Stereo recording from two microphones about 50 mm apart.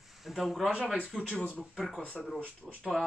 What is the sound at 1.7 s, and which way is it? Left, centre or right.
Speech, centre.